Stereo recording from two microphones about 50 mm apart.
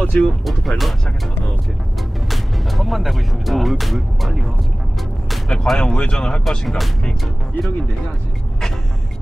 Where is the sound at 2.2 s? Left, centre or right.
Centre.